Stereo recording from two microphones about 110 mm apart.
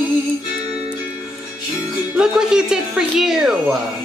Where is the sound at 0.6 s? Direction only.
90° right.